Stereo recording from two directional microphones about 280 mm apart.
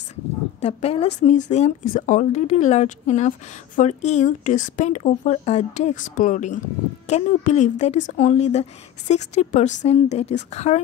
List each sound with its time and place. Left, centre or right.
0.6 s a woman's voice: left